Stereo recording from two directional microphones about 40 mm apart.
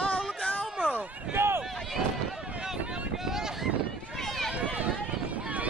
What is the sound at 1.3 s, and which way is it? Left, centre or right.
Run, right.